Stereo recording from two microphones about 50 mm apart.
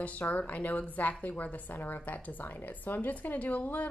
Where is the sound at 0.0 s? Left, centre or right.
Left.